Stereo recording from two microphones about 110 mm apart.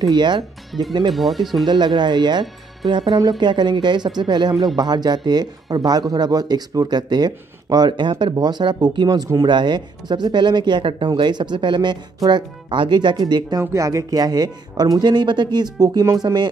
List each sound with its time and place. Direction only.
0.0 s speech: 40° right (ahead or behind)
1.1 s speech: centre (ahead or behind)
1.7 s speech: 40° right (ahead or behind)